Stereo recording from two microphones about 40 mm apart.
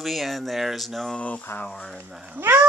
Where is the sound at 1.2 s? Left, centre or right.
Left.